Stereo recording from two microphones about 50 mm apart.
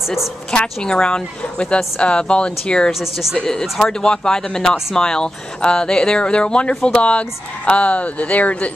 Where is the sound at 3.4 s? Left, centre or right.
Centre; by 8.7 s left.